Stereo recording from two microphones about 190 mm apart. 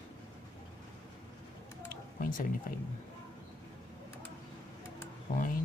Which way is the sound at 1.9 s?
45° left (ahead or behind).